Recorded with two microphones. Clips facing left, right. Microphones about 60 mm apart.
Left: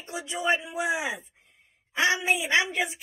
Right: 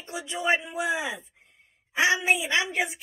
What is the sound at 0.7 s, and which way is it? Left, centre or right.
Speech, centre.